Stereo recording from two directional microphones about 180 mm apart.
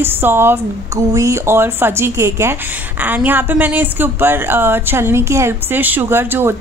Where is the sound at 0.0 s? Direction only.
10° right (ahead or behind).